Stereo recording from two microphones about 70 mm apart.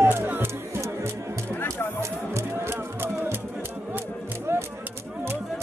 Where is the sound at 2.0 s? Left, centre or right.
Right.